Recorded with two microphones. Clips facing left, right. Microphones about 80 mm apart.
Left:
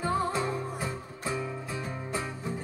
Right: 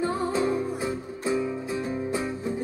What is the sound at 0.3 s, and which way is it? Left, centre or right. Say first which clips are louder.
Music: right 6 dB; centre.